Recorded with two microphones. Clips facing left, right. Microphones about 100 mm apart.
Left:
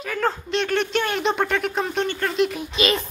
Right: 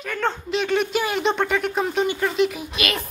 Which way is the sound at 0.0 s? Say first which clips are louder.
Left 1 dB; centre (ahead or behind).